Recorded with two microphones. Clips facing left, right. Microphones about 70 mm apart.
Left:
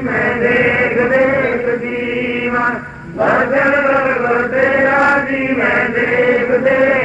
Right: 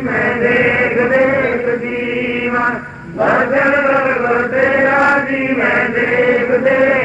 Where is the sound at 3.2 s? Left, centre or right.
Centre.